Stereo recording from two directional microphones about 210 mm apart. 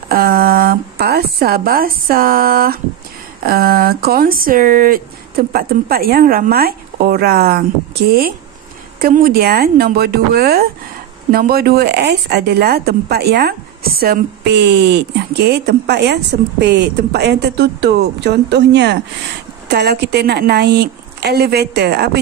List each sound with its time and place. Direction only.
0.1 s a woman's voice: 45° right (ahead or behind)
9.0 s a woman's voice: 45° right (ahead or behind)